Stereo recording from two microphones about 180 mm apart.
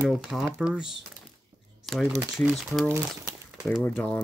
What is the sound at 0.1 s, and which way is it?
Speech, centre (ahead or behind).